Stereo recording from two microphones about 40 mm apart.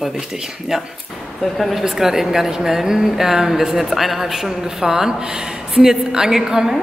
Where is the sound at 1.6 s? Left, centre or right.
Centre.